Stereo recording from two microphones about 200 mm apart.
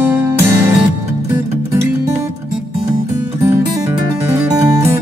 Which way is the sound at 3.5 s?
15° right (ahead or behind).